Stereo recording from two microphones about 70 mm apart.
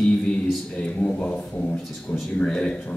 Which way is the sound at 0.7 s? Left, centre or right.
Centre.